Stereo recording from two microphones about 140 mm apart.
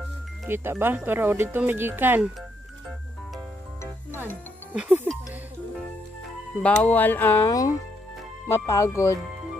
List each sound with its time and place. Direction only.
0.5 s speech: 15° right (ahead or behind)
4.7 s speech: 5° right (ahead or behind)
6.6 s speech: 10° left (ahead or behind)
7.4 s speech: 25° left (ahead or behind)